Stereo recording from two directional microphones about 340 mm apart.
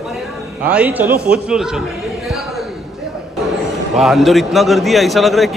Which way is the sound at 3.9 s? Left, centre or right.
Centre.